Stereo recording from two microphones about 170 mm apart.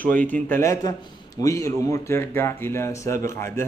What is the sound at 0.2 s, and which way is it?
A man's voice, 10° left (ahead or behind).